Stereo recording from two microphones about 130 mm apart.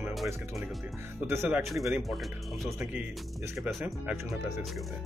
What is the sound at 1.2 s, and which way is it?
Speech, 15° right (ahead or behind).